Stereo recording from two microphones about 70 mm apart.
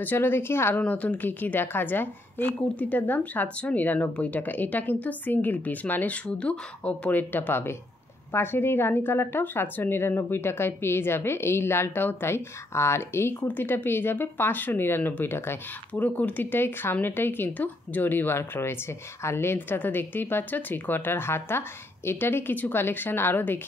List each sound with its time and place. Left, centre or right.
0.0 s a woman's voice: left
0.7 s a woman's voice: left
15.9 s a woman's voice: left